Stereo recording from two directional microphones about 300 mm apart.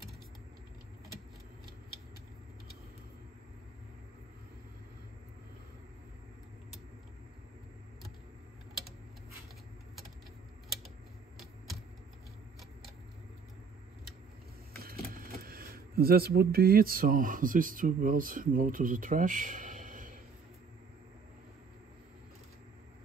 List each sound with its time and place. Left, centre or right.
14.8 s speech: right